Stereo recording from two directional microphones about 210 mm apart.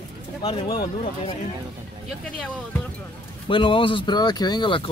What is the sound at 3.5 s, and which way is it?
Speech, 25° left (ahead or behind).